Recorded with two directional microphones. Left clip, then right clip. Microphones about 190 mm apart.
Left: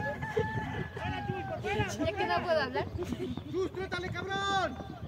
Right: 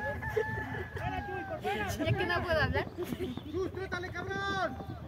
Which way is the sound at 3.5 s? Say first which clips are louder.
Left 2 dB; 45° left (ahead or behind).